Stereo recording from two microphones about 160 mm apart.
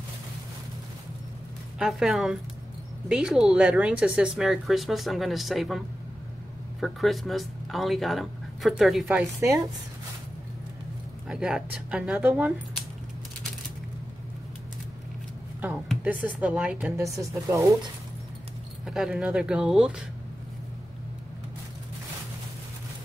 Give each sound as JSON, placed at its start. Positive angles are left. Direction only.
{"t": 1.8, "sound": "speech", "side_deg": -5}
{"t": 6.8, "sound": "speech", "side_deg": 0}
{"t": 11.2, "sound": "speech", "side_deg": -5}
{"t": 16.0, "sound": "a sound", "side_deg": -10}
{"t": 16.3, "sound": "speech", "side_deg": -10}
{"t": 16.9, "sound": "speech", "side_deg": -20}
{"t": 18.9, "sound": "speech", "side_deg": -5}